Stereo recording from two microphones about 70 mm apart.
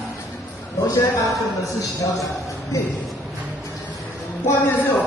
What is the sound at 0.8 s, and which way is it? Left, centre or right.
Speech, left.